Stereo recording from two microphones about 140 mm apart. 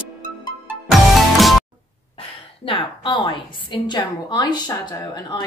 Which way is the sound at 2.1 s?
40° left (ahead or behind).